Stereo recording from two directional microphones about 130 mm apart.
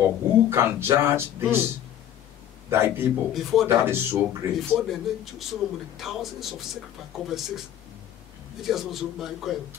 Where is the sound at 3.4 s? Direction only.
Centre (ahead or behind).